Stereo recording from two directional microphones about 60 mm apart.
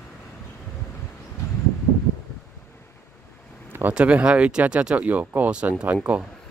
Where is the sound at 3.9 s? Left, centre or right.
Centre.